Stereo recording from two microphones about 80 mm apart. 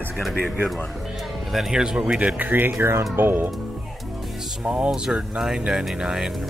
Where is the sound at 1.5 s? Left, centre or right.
Centre.